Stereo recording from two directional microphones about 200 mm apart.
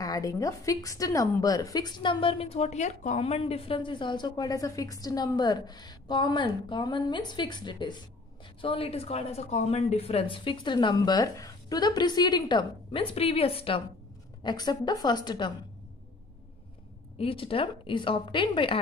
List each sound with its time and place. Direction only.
0.0 s a woman's voice: 15° left (ahead or behind)
17.2 s a woman's voice: 25° left (ahead or behind)